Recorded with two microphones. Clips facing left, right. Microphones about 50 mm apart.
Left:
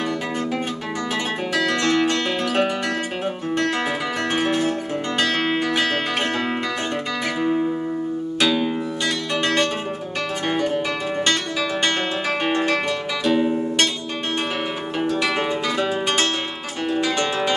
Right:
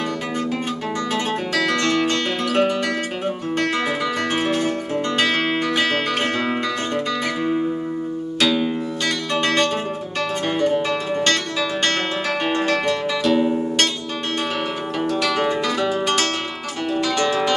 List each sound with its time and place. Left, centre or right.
1.5 s guitar: left
2.0 s music: centre
4.5 s music: centre
9.3 s music: centre
11.8 s music: centre
15.0 s music: left